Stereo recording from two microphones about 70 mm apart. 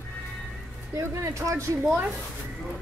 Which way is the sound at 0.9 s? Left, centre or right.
Right.